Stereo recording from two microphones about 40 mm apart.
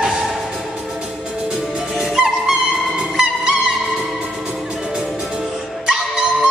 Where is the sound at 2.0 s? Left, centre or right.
Centre.